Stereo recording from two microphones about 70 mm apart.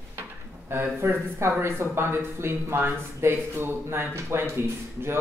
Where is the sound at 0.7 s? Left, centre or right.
Right.